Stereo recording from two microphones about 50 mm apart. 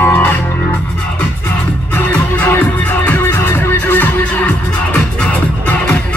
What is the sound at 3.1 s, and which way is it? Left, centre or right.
Music, left.